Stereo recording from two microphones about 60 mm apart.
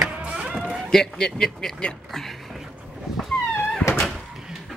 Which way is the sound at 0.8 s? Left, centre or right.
Centre.